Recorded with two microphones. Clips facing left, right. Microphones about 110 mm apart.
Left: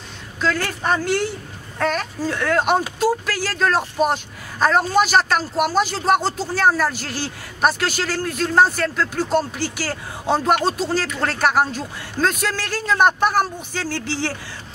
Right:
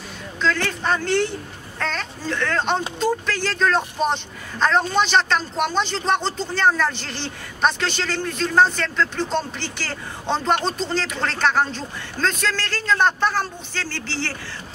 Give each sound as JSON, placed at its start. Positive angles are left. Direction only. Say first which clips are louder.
{"t": 0.4, "sound": "speech", "louder": "even", "side_deg": 10}